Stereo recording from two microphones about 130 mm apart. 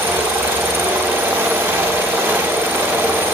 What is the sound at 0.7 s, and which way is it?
Vehicle, 15° right (ahead or behind).